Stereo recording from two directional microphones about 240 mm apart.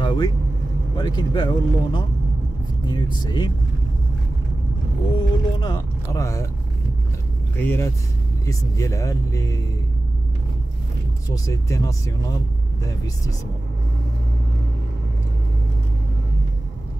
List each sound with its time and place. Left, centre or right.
0.0 s vehicle: centre
0.9 s speech: centre
5.1 s speech: centre
7.5 s speech: centre
11.2 s speech: centre